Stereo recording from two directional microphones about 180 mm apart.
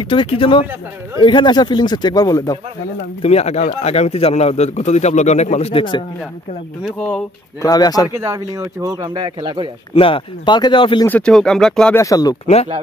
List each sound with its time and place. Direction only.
0.0 s speech: 30° left (ahead or behind)
3.2 s speech: 35° left (ahead or behind)
6.8 s speech: 5° left (ahead or behind)
7.6 s speech: 20° left (ahead or behind)
8.2 s speech: 20° right (ahead or behind)
9.9 s speech: 30° left (ahead or behind)
11.1 s speech: 5° left (ahead or behind)
12.0 s speech: 20° left (ahead or behind)